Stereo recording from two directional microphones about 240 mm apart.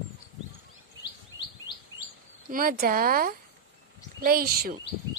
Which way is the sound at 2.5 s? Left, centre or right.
Right.